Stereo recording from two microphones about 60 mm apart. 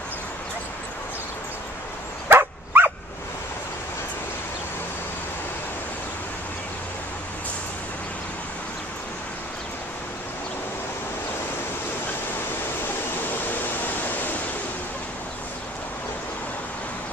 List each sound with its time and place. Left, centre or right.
2.2 s dog: right
13.5 s pink noise: left